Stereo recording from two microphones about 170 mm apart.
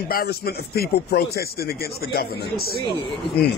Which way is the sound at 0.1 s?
65° left (ahead or behind).